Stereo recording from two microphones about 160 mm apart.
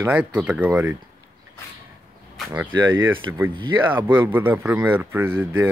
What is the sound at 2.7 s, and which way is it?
Speech, 30° right (ahead or behind).